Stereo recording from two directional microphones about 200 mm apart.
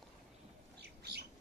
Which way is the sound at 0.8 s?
55° right (ahead or behind).